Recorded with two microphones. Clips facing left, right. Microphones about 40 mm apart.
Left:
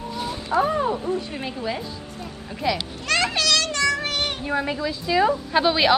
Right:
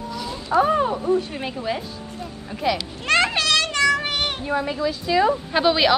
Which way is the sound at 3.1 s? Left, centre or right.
Right.